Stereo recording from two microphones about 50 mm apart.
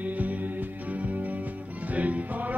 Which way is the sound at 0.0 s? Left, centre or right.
Right.